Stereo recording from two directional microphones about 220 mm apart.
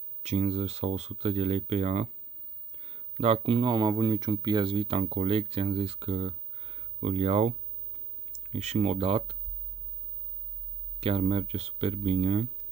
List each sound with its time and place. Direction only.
0.2 s speech: 30° right (ahead or behind)
11.0 s speech: 25° right (ahead or behind)